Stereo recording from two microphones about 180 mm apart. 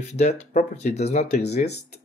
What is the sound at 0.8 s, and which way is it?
Speech, 40° left (ahead or behind).